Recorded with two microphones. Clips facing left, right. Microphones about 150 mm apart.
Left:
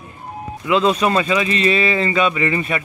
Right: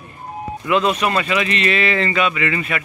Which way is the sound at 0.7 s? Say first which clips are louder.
Left 2 dB; 25° left (ahead or behind).